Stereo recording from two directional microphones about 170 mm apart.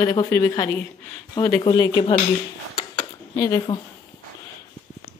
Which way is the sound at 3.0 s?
25° left (ahead or behind).